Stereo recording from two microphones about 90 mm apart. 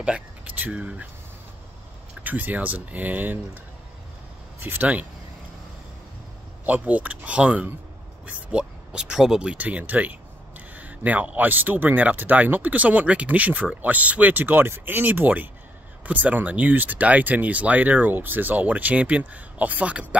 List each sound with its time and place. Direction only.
0.0 s speech: 15° right (ahead or behind)
2.2 s speech: 20° right (ahead or behind)
4.6 s speech: 20° right (ahead or behind)
6.6 s speech: 15° right (ahead or behind)